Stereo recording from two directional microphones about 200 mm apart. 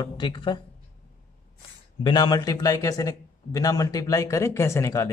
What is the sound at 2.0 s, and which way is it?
A man's voice, 20° left (ahead or behind).